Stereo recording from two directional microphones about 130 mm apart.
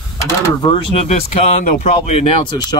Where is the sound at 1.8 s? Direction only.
50° left (ahead or behind).